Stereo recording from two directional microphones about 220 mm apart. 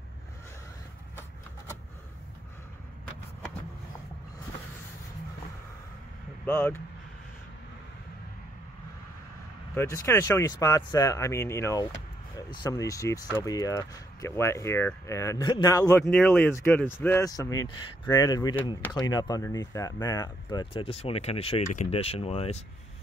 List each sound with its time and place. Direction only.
6.4 s speech: 5° left (ahead or behind)
9.8 s speech: 15° left (ahead or behind)